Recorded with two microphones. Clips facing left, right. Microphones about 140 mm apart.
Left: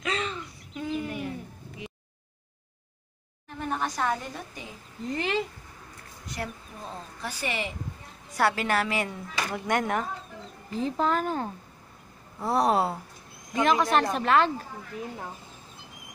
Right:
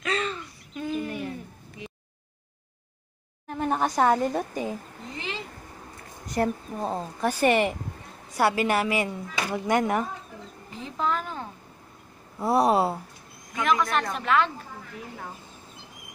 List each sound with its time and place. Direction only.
0.0 s a sound: 15° left (ahead or behind)
3.4 s a woman's voice: 40° right (ahead or behind)
5.1 s speech: 55° left (ahead or behind)
6.2 s a woman's voice: 45° right (ahead or behind)
8.4 s speech: 10° right (ahead or behind)
11.0 s speech: 45° left (ahead or behind)
12.4 s speech: 10° right (ahead or behind)
13.6 s a woman's voice: 30° left (ahead or behind)